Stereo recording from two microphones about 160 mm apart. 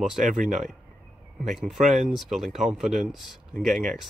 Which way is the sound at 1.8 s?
50° right (ahead or behind).